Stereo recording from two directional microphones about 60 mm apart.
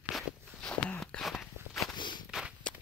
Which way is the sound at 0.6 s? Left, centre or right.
Centre.